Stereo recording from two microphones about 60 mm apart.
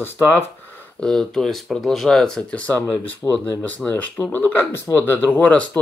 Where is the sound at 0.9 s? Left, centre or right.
Centre.